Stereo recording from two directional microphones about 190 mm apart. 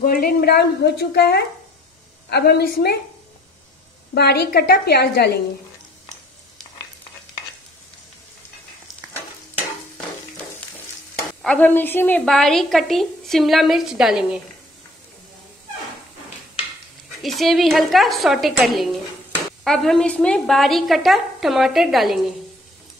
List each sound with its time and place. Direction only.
0.0 s a woman's voice: 50° left (ahead or behind)
4.1 s a woman's voice: 60° left (ahead or behind)
11.4 s a woman's voice: 10° left (ahead or behind)
17.2 s a woman's voice: centre (ahead or behind)